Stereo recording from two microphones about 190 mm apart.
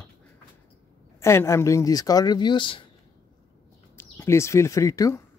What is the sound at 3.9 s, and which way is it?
Speech, 15° left (ahead or behind).